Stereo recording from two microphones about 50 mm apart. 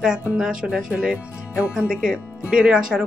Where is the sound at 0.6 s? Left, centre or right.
Centre.